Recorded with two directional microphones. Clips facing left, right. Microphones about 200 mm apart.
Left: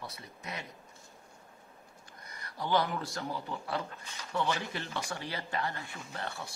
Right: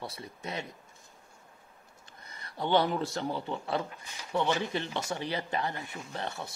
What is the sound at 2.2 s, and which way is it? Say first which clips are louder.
Speech: right 4 dB; 25° right (ahead or behind).